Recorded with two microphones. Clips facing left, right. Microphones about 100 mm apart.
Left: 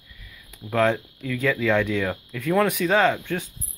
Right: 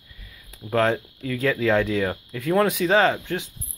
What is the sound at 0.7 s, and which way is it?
Speech, 35° right (ahead or behind).